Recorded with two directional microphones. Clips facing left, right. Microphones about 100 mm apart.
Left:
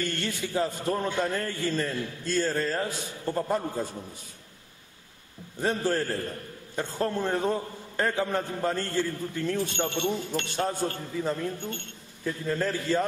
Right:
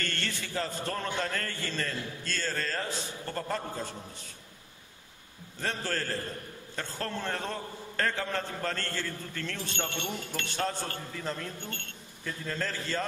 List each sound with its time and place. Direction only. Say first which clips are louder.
0.0 s a man's voice: left 5 dB; 15° left (ahead or behind)
5.6 s a man's voice: left 7 dB; 15° left (ahead or behind)